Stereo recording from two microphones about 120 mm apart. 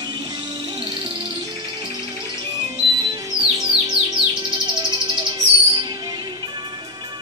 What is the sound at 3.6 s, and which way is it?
Music, 50° right (ahead or behind).